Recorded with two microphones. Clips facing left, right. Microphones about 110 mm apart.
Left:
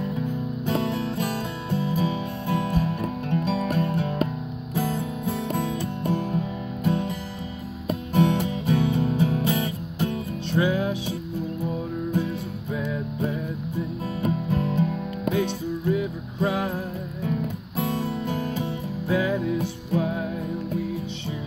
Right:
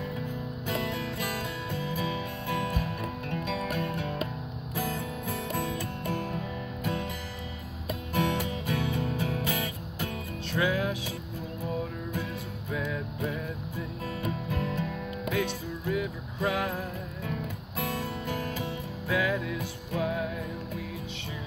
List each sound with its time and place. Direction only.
0.7 s music: 30° left (ahead or behind)
12.7 s music: 30° left (ahead or behind)